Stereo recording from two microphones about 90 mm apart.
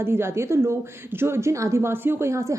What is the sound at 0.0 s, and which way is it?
A woman's voice, 30° right (ahead or behind).